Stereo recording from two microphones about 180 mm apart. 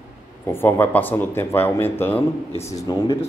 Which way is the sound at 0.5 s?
10° left (ahead or behind).